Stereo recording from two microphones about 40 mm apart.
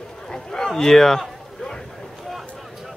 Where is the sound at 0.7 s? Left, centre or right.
Centre.